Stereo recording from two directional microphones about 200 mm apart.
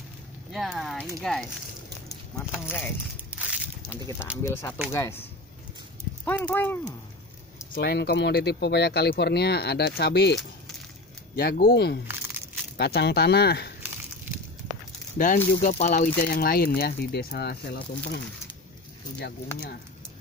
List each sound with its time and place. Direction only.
0.5 s speech: centre (ahead or behind)
3.3 s a sound: 5° right (ahead or behind)
4.0 s speech: 15° left (ahead or behind)
6.2 s speech: 10° left (ahead or behind)
7.7 s speech: 50° left (ahead or behind)
11.3 s speech: 50° left (ahead or behind)
15.1 s speech: 40° left (ahead or behind)
16.2 s speech: 50° left (ahead or behind)